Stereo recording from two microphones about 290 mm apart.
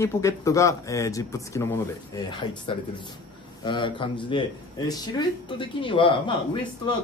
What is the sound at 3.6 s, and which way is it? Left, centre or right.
Speech, centre.